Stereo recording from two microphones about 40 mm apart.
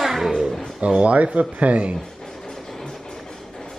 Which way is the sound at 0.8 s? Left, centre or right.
Right.